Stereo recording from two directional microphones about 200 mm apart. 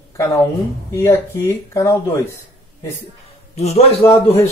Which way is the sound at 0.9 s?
15° left (ahead or behind).